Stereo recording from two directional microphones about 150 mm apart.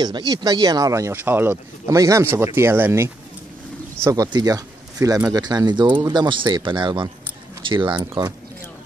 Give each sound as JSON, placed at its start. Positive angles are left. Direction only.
{"t": 0.0, "sound": "speech", "side_deg": -25}